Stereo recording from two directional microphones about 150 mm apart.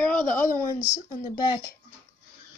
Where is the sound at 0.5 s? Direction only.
20° left (ahead or behind).